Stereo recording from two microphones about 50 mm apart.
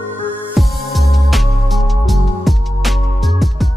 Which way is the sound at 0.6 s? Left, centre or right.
Centre.